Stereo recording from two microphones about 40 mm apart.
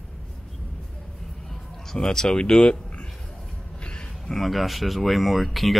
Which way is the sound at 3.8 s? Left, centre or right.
Left.